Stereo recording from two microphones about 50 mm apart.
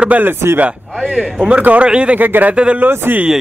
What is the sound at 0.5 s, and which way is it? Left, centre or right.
Speech, right.